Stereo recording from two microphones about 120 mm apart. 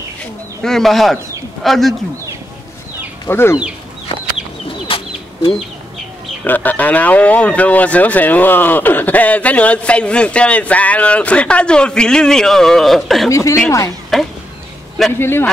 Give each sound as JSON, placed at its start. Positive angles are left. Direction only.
{"t": 0.2, "sound": "speech", "side_deg": 5}
{"t": 3.3, "sound": "speech", "side_deg": 20}
{"t": 4.8, "sound": "bird", "side_deg": 50}
{"t": 6.4, "sound": "speech", "side_deg": 15}
{"t": 13.3, "sound": "speech", "side_deg": 25}
{"t": 15.1, "sound": "speech", "side_deg": 20}